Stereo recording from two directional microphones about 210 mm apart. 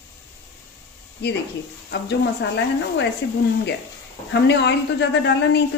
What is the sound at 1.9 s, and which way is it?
A woman's voice, 55° left (ahead or behind).